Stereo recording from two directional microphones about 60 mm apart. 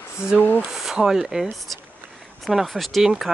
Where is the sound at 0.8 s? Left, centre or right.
Centre.